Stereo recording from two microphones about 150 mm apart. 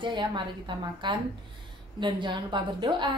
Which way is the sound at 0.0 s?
30° right (ahead or behind).